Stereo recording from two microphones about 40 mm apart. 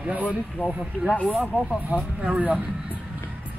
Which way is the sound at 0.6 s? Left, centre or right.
Left.